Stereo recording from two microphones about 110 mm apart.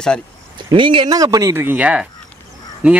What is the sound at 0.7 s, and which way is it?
Speech, 50° right (ahead or behind).